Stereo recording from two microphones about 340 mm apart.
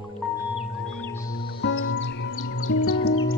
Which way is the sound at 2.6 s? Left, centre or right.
Left.